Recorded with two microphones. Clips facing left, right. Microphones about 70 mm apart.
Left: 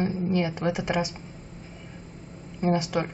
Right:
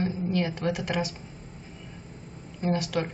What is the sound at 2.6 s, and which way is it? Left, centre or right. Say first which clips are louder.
Speech: left 2 dB; centre.